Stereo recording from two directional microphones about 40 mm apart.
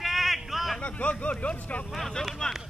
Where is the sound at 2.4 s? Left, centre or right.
Left.